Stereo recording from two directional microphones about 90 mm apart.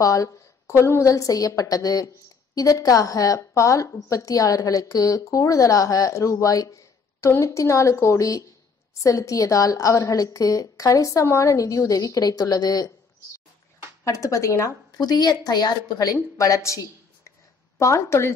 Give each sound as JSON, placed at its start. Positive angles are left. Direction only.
{"t": 0.0, "sound": "a woman's voice", "side_deg": 35}
{"t": 14.0, "sound": "a woman's voice", "side_deg": 40}
{"t": 14.9, "sound": "a woman's voice", "side_deg": 50}